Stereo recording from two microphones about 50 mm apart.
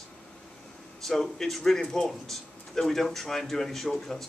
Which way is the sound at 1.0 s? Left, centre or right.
Centre.